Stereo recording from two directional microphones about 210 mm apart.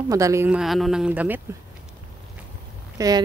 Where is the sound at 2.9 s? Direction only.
15° right (ahead or behind).